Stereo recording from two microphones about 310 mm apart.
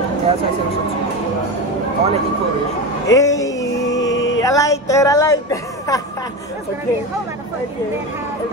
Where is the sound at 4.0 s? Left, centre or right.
Left.